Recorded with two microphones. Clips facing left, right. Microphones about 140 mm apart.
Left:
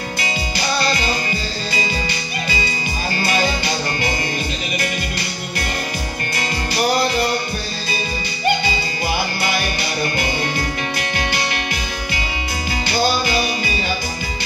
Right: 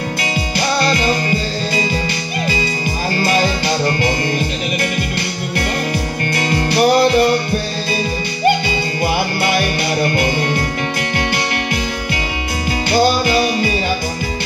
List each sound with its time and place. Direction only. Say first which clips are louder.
0.2 s music: right 3 dB; 55° right (ahead or behind)
3.2 s music: right 3 dB; 45° right (ahead or behind)
6.3 s music: right 7 dB; 60° right (ahead or behind)
12.9 s music: right 5 dB; 55° right (ahead or behind)